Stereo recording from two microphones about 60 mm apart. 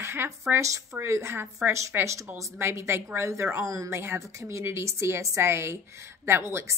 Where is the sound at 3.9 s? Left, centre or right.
Right.